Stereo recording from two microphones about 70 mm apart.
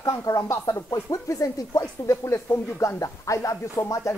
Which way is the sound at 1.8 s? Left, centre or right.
Left.